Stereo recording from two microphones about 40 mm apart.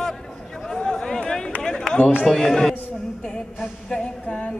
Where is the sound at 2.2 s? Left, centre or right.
Centre.